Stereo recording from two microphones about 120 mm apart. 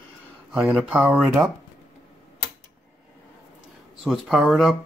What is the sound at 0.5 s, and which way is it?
Speech, 5° right (ahead or behind).